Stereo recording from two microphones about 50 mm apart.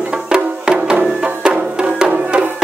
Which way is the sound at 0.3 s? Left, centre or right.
Centre.